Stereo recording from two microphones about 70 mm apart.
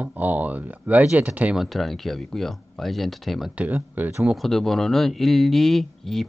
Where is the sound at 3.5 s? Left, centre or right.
Right.